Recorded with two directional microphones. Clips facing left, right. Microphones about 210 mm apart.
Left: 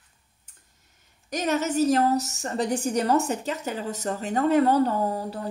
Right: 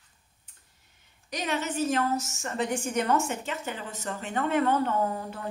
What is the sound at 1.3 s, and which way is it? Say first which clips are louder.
A woman's voice: left 6 dB; 45° left (ahead or behind).